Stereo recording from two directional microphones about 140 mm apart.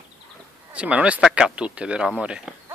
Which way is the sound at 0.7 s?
10° right (ahead or behind).